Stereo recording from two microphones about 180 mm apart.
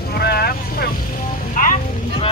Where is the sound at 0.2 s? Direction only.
60° left (ahead or behind).